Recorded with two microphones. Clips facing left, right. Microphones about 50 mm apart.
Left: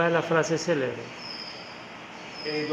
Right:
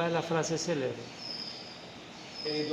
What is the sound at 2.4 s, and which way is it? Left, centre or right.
Speech, left.